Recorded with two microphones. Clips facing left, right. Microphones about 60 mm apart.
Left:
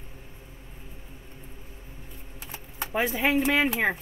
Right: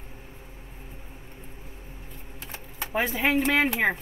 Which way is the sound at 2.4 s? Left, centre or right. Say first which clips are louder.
Even; centre.